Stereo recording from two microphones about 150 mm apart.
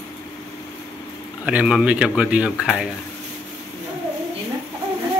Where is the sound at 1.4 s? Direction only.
10° right (ahead or behind).